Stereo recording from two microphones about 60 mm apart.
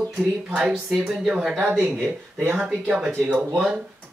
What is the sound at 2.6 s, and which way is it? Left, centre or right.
Speech, centre.